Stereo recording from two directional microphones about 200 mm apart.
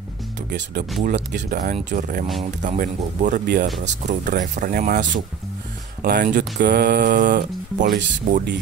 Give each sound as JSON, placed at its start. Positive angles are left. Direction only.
{"t": 0.5, "sound": "speech", "side_deg": -55}
{"t": 1.6, "sound": "speech", "side_deg": -40}